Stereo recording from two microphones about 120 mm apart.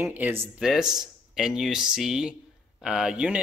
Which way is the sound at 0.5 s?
5° right (ahead or behind).